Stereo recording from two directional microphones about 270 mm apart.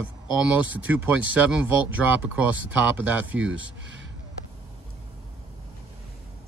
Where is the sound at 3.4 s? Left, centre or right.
Right.